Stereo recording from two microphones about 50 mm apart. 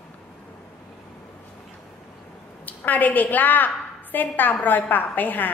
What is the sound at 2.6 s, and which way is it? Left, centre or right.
A woman's voice, left.